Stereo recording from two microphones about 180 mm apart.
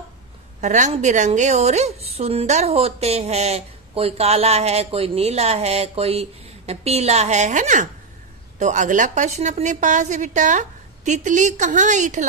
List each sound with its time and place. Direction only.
0.6 s a woman's voice: 40° right (ahead or behind)